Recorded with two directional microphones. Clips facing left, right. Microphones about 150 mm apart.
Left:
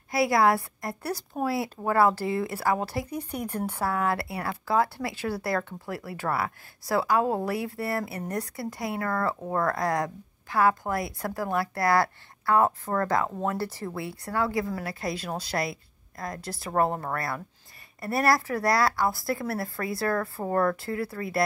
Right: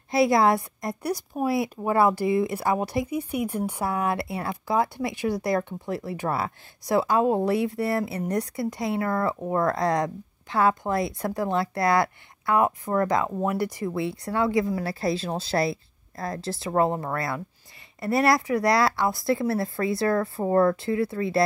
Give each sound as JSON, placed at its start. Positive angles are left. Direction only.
{"t": 0.1, "sound": "speech", "side_deg": -25}